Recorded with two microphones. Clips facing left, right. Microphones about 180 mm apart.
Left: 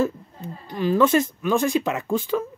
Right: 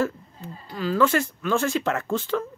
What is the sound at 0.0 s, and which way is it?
Speech, 20° left (ahead or behind).